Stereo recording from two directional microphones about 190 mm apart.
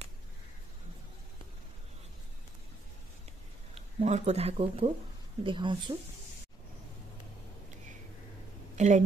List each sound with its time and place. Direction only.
4.0 s a woman's voice: 35° right (ahead or behind)
8.7 s a woman's voice: 40° right (ahead or behind)